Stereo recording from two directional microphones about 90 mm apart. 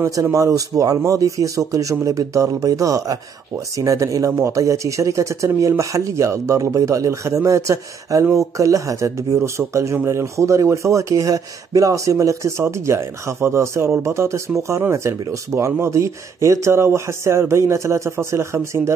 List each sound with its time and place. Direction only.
0.0 s speech: 35° right (ahead or behind)